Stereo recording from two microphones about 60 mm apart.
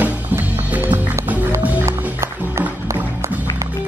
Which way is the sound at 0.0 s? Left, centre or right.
Right.